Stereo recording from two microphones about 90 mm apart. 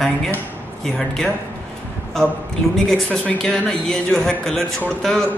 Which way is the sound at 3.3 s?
5° left (ahead or behind).